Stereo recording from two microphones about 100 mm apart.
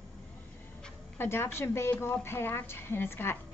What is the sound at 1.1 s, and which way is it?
A woman's voice, 25° left (ahead or behind).